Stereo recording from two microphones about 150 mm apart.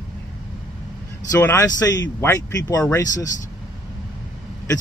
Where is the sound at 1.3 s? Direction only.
20° left (ahead or behind).